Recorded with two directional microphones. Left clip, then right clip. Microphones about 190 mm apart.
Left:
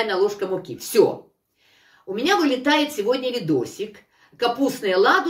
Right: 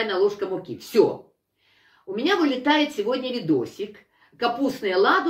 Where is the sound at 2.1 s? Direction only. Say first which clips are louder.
Left 2 dB; 15° left (ahead or behind).